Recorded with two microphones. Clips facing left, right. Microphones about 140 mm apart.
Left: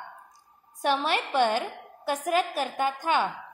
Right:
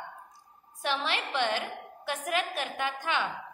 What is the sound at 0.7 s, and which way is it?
A woman's voice, 45° left (ahead or behind).